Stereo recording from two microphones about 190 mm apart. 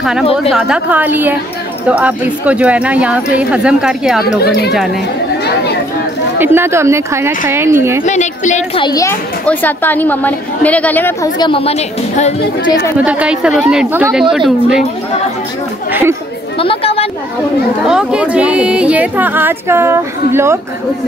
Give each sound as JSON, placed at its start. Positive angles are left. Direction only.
{"t": 0.5, "sound": "a woman's voice", "side_deg": -5}
{"t": 5.4, "sound": "chatter", "side_deg": 60}
{"t": 6.3, "sound": "a woman's voice", "side_deg": -10}
{"t": 8.0, "sound": "a woman's voice", "side_deg": 40}
{"t": 8.8, "sound": "speech", "side_deg": 15}
{"t": 11.3, "sound": "a woman's voice", "side_deg": 25}
{"t": 13.0, "sound": "a woman's voice", "side_deg": -5}
{"t": 15.9, "sound": "a woman's voice", "side_deg": -10}
{"t": 16.5, "sound": "chatter", "side_deg": 30}
{"t": 17.8, "sound": "a woman's voice", "side_deg": -5}